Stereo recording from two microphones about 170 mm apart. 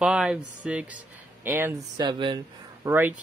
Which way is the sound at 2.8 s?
15° right (ahead or behind).